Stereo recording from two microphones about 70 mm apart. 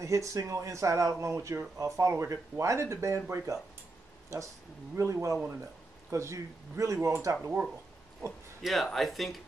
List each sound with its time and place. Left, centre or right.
0.0 s speech: right
8.6 s speech: centre